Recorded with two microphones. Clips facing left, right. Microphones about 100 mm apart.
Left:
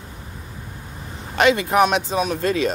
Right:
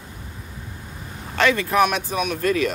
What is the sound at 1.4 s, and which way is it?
Speech, 20° left (ahead or behind).